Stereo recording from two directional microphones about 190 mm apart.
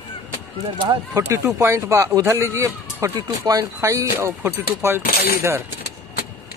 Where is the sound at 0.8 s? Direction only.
25° right (ahead or behind).